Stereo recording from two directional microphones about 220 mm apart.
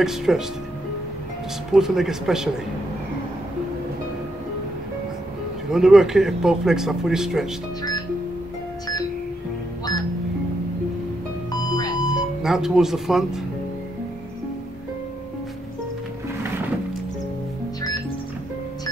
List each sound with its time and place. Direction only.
0.0 s speech: centre (ahead or behind)
1.7 s speech: centre (ahead or behind)
5.7 s speech: centre (ahead or behind)
11.6 s a sound: 15° left (ahead or behind)
12.4 s speech: centre (ahead or behind)